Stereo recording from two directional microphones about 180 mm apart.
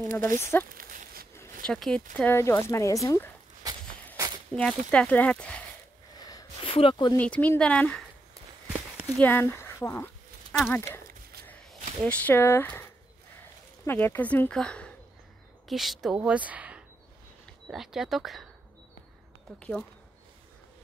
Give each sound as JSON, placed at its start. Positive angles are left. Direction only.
{"t": 0.1, "sound": "speech", "side_deg": -50}
{"t": 0.4, "sound": "speech", "side_deg": 15}
{"t": 0.7, "sound": "a sound", "side_deg": -50}
{"t": 1.3, "sound": "a sound", "side_deg": 15}
{"t": 1.7, "sound": "speech", "side_deg": 5}
{"t": 3.6, "sound": "walk", "side_deg": -20}
{"t": 4.5, "sound": "speech", "side_deg": 5}
{"t": 6.1, "sound": "a sound", "side_deg": 20}
{"t": 7.2, "sound": "speech", "side_deg": 10}
{"t": 9.2, "sound": "speech", "side_deg": 10}
{"t": 11.4, "sound": "a sound", "side_deg": 5}
{"t": 12.0, "sound": "speech", "side_deg": 10}
{"t": 13.8, "sound": "speech", "side_deg": 10}